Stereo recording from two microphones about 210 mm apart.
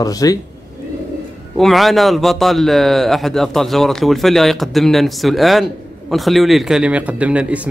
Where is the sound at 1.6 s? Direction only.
Centre (ahead or behind).